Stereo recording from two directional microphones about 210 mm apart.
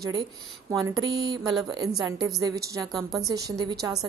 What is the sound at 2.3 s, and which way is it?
Speech, 15° right (ahead or behind).